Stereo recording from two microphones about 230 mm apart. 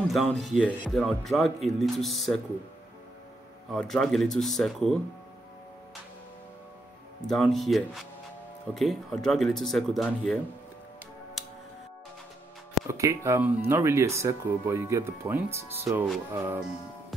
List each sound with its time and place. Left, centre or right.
0.1 s speech: centre
3.7 s speech: centre
7.2 s speech: centre
12.8 s speech: centre